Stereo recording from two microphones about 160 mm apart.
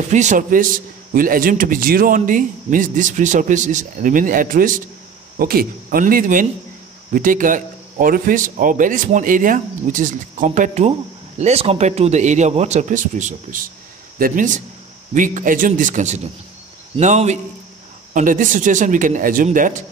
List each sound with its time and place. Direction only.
0.1 s a man's voice: 50° right (ahead or behind)